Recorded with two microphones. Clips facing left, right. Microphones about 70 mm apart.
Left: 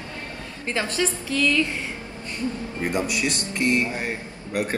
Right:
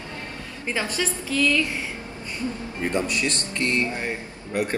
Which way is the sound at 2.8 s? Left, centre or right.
Centre.